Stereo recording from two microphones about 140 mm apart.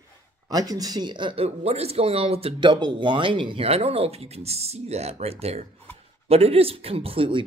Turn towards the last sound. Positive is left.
turn(degrees=-40)  # may be behind; listen again after turning